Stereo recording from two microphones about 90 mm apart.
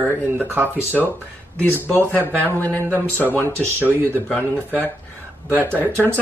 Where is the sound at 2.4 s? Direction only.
20° left (ahead or behind).